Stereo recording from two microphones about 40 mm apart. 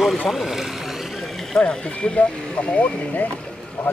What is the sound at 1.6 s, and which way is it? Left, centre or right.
Speech, left.